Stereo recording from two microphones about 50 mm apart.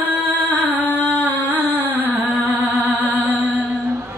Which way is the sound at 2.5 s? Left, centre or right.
Right.